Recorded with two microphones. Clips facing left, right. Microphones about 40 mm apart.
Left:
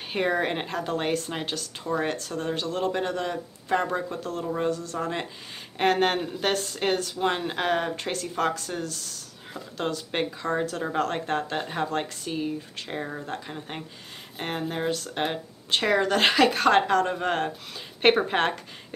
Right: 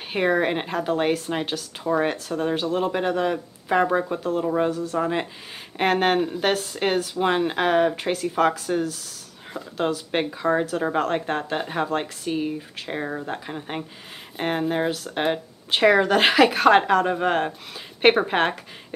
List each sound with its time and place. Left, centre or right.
0.1 s speech: centre